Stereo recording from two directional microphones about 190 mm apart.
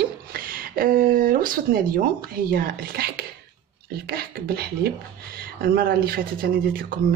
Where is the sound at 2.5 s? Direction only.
50° right (ahead or behind).